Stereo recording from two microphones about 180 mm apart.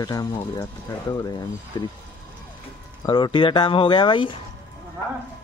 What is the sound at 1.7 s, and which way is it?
Speech, 20° left (ahead or behind).